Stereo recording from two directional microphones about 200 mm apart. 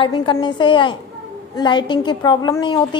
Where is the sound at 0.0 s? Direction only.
25° left (ahead or behind).